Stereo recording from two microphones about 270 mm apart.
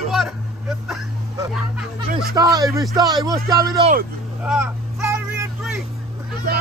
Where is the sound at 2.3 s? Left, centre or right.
Centre.